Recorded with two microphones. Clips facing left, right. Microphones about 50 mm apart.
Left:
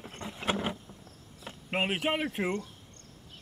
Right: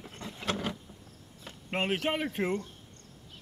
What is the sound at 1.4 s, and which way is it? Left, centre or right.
Speech, centre.